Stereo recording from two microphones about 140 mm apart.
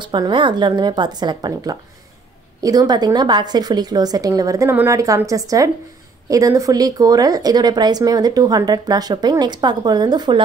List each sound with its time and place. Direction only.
0.0 s speech: 35° right (ahead or behind)